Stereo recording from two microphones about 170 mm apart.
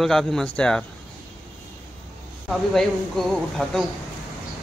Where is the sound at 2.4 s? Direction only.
Centre (ahead or behind).